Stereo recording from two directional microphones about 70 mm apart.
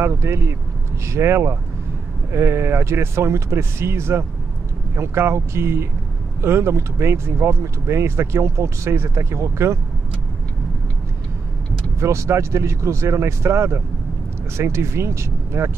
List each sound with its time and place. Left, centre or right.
0.0 s speech: right
12.0 s speech: right